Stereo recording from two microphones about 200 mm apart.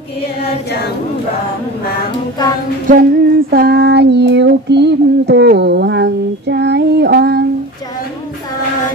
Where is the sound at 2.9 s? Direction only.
45° right (ahead or behind).